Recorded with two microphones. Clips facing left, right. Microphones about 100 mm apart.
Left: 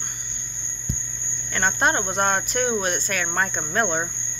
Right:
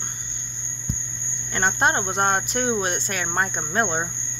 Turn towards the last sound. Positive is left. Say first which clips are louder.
# even
turn(degrees=-20)  # may be behind; listen again after turning